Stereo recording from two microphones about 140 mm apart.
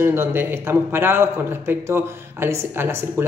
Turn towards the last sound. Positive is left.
turn(degrees=-15)  # may be behind; listen again after turning